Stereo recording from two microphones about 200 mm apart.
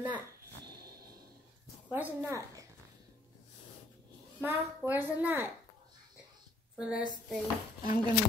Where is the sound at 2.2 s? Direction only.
15° right (ahead or behind).